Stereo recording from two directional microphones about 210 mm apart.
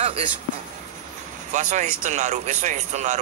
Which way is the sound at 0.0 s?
30° right (ahead or behind).